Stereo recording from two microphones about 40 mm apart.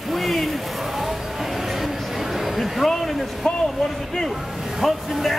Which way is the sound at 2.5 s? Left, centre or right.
Centre.